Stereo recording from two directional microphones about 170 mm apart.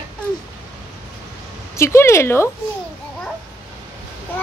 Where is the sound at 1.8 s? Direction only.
15° left (ahead or behind).